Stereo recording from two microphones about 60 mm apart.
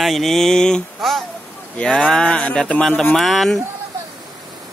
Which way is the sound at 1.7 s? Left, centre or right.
Centre.